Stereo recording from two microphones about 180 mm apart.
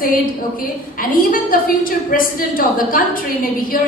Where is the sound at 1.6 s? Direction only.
50° left (ahead or behind).